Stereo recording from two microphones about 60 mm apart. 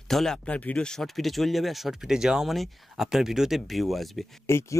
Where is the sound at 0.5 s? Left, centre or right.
Left.